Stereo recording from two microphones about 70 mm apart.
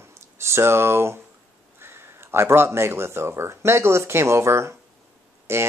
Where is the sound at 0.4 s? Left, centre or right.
Right.